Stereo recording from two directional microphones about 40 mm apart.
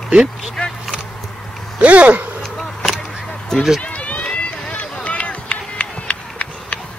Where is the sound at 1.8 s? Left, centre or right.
Right.